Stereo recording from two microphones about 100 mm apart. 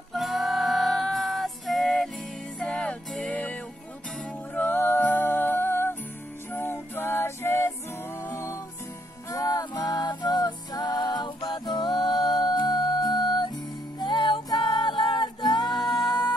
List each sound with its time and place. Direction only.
0.1 s music: centre (ahead or behind)
4.6 s music: 20° left (ahead or behind); by 16.3 s 50° left (ahead or behind)